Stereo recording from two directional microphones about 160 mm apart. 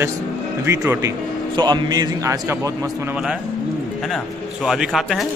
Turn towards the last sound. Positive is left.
turn(degrees=0)  # may be behind; listen again after turning